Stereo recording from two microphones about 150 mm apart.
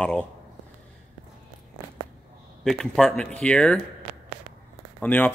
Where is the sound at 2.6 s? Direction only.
5° left (ahead or behind).